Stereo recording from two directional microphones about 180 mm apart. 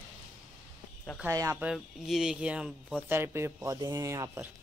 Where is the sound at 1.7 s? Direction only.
Centre (ahead or behind).